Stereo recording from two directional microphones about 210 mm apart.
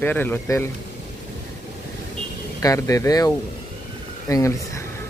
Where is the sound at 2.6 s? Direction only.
15° left (ahead or behind).